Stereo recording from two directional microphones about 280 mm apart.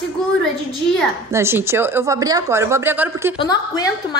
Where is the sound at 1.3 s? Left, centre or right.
Centre.